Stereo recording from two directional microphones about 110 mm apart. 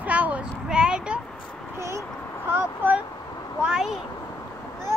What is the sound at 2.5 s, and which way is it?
Speech, 15° right (ahead or behind).